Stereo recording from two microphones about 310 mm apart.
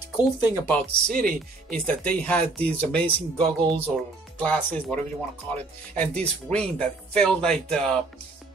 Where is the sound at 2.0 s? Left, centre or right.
Centre.